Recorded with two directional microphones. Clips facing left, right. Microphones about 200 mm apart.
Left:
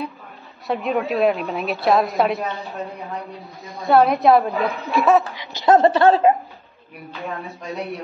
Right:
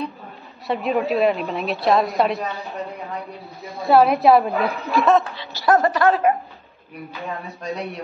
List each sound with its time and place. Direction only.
0.7 s a woman's voice: centre (ahead or behind)
3.8 s a woman's voice: centre (ahead or behind)
5.3 s speech: 20° left (ahead or behind)
7.2 s a woman's voice: centre (ahead or behind)